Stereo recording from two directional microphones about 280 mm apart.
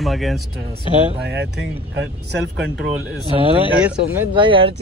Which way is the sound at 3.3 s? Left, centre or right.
Centre.